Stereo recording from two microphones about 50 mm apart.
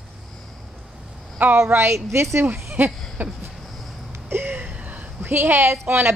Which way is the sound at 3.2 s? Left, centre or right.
Right.